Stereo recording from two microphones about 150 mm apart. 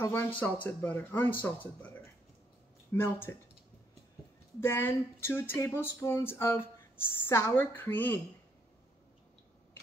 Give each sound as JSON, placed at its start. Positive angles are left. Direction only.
{"t": 0.0, "sound": "speech", "side_deg": 15}
{"t": 2.9, "sound": "speech", "side_deg": 15}
{"t": 4.6, "sound": "speech", "side_deg": 15}